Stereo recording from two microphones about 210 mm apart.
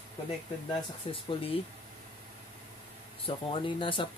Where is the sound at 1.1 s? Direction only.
25° left (ahead or behind).